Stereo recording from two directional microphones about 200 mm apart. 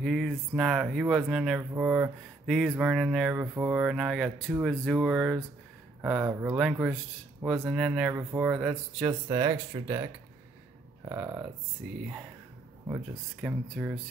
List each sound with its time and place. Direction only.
0.0 s speech: centre (ahead or behind)
11.1 s speech: 15° right (ahead or behind)
13.4 s speech: 5° right (ahead or behind)